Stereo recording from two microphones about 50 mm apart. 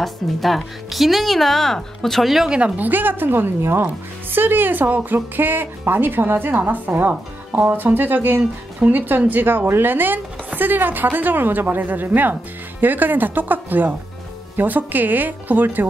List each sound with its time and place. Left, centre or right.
0.0 s a woman's voice: centre
2.8 s speech: right